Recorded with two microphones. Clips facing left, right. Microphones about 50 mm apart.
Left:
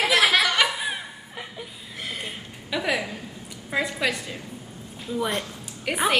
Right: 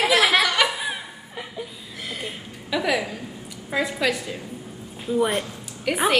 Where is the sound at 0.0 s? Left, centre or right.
Centre.